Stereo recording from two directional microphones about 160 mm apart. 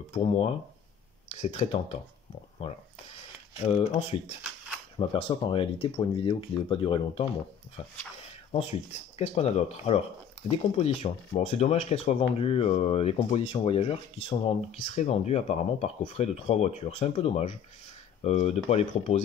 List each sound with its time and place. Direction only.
0.1 s speech: 35° left (ahead or behind)
3.5 s speech: 40° left (ahead or behind)
8.5 s speech: 40° left (ahead or behind)